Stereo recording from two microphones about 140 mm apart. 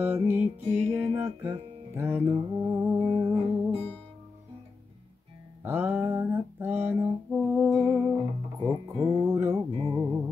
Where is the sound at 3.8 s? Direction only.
10° left (ahead or behind).